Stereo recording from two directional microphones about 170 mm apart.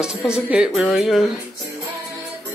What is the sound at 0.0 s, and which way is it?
Speech, 5° right (ahead or behind).